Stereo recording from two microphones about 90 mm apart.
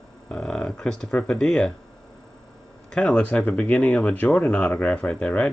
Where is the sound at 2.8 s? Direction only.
5° left (ahead or behind).